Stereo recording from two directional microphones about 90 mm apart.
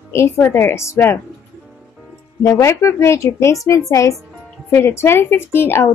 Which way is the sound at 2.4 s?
35° left (ahead or behind).